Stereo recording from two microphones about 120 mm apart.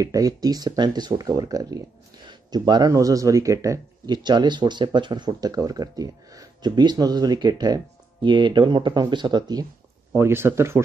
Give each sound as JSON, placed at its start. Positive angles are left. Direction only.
{"t": 0.0, "sound": "speech", "side_deg": -30}
{"t": 10.1, "sound": "speech", "side_deg": -20}